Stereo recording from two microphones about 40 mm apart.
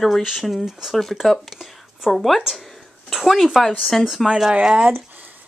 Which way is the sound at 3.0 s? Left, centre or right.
Centre.